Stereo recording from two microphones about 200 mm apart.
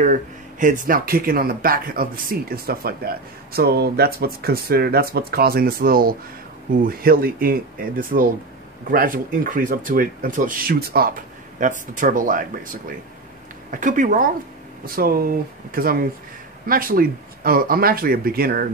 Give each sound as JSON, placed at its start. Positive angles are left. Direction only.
{"t": 0.0, "sound": "speech", "side_deg": -40}